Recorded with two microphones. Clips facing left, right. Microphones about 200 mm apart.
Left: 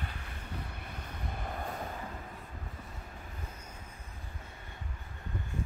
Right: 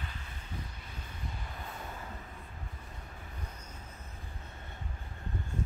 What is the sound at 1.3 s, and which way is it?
Train, 55° left (ahead or behind).